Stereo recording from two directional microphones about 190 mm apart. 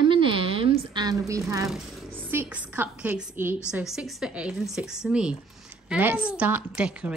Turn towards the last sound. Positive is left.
turn(degrees=-5)  # may be behind; listen again after turning